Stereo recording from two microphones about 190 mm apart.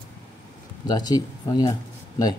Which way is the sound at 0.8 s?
20° left (ahead or behind).